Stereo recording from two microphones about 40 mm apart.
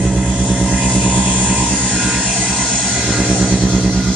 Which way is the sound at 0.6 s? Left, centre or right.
Right.